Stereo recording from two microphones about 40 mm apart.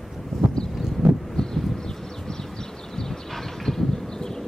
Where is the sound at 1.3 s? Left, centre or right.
Centre.